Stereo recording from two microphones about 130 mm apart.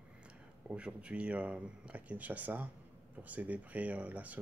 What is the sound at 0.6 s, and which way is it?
Speech, 10° right (ahead or behind).